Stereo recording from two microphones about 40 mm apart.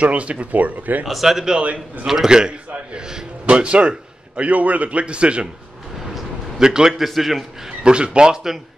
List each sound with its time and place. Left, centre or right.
0.0 s a man's voice: right
1.0 s speech: centre
1.6 s a man's voice: right
2.0 s speech: centre
2.7 s speech: right
4.4 s a man's voice: right
6.6 s speech: centre
7.0 s a man's voice: centre
7.8 s speech: right